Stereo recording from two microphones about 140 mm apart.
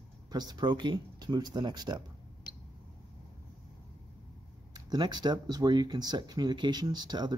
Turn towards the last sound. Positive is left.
turn(degrees=-30)  # may be behind; listen again after turning